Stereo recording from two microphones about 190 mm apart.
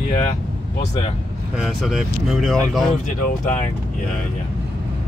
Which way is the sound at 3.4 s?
40° left (ahead or behind).